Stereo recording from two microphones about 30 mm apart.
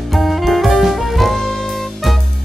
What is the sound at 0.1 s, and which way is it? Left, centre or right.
Music, centre.